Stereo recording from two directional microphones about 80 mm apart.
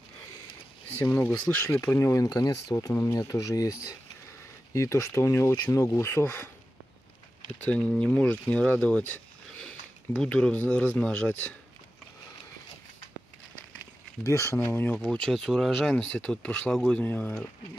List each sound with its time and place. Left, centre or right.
1.0 s speech: left
2.2 s speech: left
2.9 s speech: left
4.7 s speech: left
7.4 s speech: centre
9.6 s a sound: centre
10.3 s speech: centre
14.2 s speech: left
15.0 s speech: centre
16.0 s speech: centre